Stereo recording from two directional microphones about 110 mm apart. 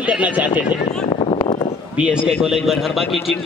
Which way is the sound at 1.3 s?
50° left (ahead or behind).